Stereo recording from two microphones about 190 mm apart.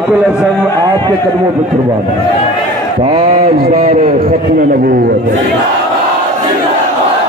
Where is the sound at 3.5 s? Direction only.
50° right (ahead or behind).